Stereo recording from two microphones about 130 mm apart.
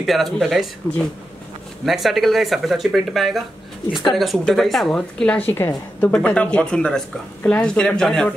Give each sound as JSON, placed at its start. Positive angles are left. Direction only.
{"t": 0.0, "sound": "a woman's voice", "side_deg": 0}